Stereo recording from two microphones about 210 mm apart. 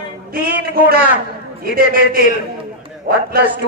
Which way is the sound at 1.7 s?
45° right (ahead or behind).